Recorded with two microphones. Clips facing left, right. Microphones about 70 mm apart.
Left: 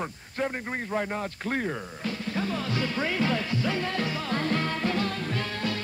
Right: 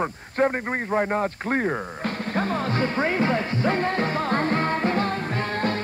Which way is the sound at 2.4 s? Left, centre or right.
Right.